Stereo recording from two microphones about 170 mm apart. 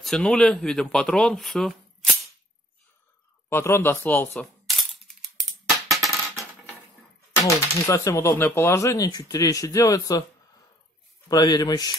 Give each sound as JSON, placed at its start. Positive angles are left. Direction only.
{"t": 0.0, "sound": "speech", "side_deg": 5}
{"t": 3.4, "sound": "cap gun", "side_deg": 15}
{"t": 5.9, "sound": "music", "side_deg": 0}
{"t": 7.4, "sound": "speech", "side_deg": 20}
{"t": 11.2, "sound": "speech", "side_deg": 20}